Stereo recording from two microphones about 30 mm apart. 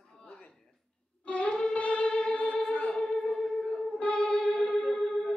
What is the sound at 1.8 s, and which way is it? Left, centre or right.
Music, left.